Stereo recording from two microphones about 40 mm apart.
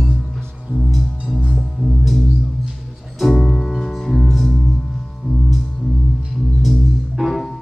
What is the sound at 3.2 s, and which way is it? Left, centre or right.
Music, centre.